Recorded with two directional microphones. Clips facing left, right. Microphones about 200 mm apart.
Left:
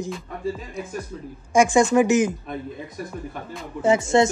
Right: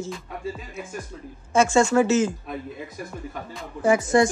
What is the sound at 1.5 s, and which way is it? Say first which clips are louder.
Speech: left 2 dB; 15° left (ahead or behind).